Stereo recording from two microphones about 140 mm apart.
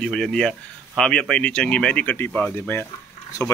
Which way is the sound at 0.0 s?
5° left (ahead or behind).